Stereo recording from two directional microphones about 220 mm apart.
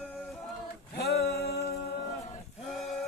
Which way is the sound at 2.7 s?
Centre (ahead or behind).